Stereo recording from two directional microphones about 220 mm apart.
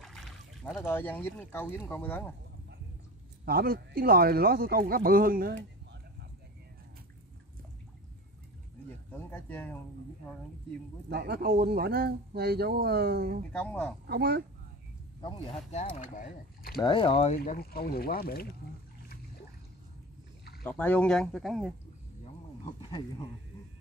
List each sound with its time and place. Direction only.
0.0 s trickle: centre (ahead or behind)
0.8 s speech: 10° left (ahead or behind)
3.4 s speech: 45° right (ahead or behind)
9.1 s speech: 10° left (ahead or behind)
11.1 s speech: 45° right (ahead or behind)
13.5 s speech: 5° left (ahead or behind)
14.0 s speech: 45° right (ahead or behind)
15.2 s speech: 25° left (ahead or behind)
16.8 s speech: 20° left (ahead or behind)
17.4 s speech: 45° left (ahead or behind)
20.6 s speech: 5° left (ahead or behind)
22.8 s speech: 20° left (ahead or behind)